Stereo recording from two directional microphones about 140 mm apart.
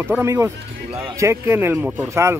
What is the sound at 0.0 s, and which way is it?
Speech, 15° right (ahead or behind).